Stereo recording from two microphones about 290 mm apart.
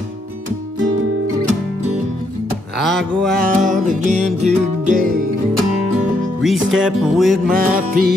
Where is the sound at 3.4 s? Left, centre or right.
Right.